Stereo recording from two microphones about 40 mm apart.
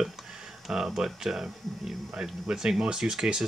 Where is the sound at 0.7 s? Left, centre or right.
Centre.